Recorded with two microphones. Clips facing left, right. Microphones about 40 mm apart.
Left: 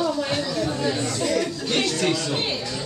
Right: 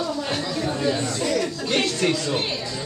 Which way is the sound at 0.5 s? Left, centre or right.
Right.